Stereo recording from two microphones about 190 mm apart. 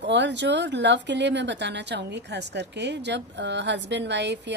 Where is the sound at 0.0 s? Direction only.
70° right (ahead or behind).